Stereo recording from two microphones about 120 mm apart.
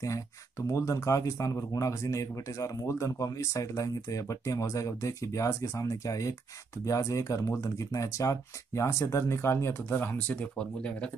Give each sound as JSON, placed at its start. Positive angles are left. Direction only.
{"t": 0.0, "sound": "speech", "side_deg": 25}